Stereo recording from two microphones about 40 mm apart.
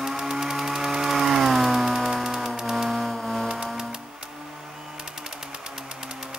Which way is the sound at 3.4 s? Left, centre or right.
Centre.